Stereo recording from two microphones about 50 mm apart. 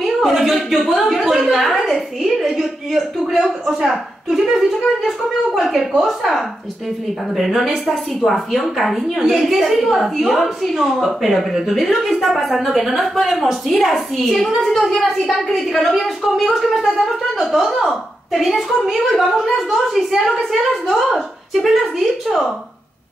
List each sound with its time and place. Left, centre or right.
0.0 s a woman's voice: centre
7.8 s a woman's voice: centre